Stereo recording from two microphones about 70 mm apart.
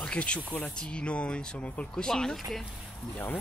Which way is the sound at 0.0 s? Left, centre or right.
Centre.